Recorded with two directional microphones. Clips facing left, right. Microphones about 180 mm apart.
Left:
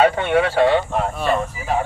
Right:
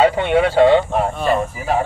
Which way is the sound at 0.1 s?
15° right (ahead or behind).